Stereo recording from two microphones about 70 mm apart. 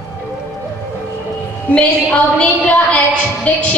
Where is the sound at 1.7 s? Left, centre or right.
Left.